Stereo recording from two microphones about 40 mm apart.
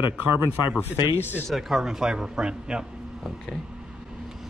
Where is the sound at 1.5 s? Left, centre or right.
Centre.